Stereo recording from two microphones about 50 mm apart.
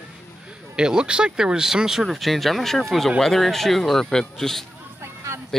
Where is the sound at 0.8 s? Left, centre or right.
Centre.